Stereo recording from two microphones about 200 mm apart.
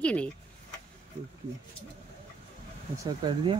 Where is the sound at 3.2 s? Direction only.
25° right (ahead or behind).